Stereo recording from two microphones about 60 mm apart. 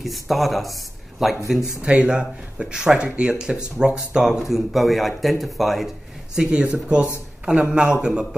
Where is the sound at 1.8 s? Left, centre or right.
Centre.